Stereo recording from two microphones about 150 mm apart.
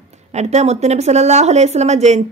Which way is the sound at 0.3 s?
50° right (ahead or behind).